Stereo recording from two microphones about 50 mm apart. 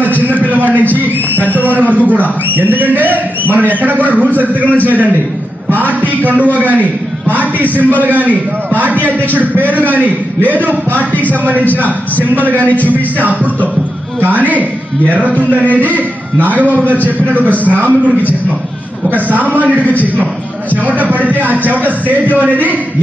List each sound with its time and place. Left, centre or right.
0.0 s a sound: right
1.8 s a man's voice: right
12.4 s speech: right
19.2 s speech: right